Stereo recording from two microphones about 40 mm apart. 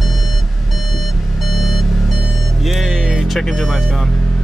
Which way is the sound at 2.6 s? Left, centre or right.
Centre.